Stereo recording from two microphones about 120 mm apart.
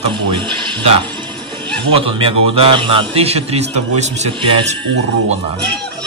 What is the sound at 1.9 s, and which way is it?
A man's voice, 50° right (ahead or behind).